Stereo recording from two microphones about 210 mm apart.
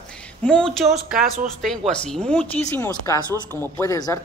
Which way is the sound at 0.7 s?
Centre (ahead or behind).